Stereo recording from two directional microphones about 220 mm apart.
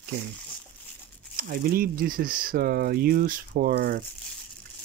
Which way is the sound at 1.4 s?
40° right (ahead or behind).